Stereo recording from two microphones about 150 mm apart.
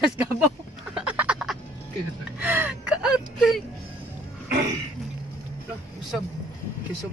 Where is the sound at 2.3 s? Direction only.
10° right (ahead or behind).